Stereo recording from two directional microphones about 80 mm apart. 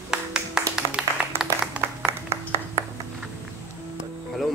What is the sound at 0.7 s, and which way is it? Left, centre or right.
Music, centre.